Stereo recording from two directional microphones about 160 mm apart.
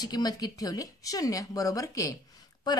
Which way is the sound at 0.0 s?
25° left (ahead or behind).